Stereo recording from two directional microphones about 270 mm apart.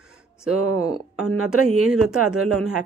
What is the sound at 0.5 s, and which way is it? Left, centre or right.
Speech, right.